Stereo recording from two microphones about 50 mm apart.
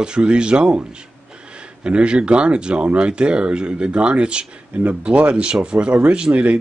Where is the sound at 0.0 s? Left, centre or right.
Centre.